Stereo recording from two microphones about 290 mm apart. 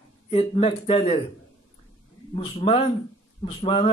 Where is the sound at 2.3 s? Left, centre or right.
Centre.